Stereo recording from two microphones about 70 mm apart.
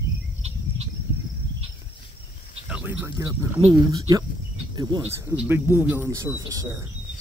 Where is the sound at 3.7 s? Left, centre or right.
Right.